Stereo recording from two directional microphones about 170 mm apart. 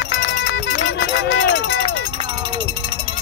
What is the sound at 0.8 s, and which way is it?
Run, 90° left.